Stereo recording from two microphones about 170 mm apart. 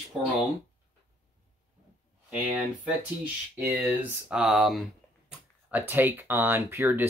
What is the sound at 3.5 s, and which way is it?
Speech, 10° right (ahead or behind).